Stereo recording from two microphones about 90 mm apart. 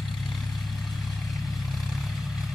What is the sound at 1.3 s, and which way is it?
Vehicle, centre (ahead or behind).